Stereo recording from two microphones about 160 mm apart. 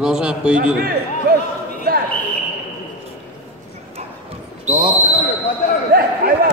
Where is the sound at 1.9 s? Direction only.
65° right (ahead or behind).